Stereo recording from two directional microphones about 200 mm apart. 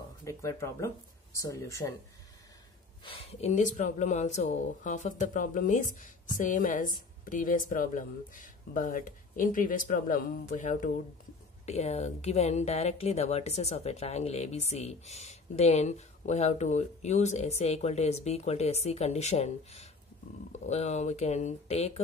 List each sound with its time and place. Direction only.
0.2 s speech: 15° left (ahead or behind)
3.0 s speech: 25° left (ahead or behind)